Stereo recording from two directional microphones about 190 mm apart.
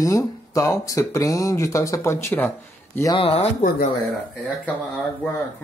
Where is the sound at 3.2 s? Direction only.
30° left (ahead or behind).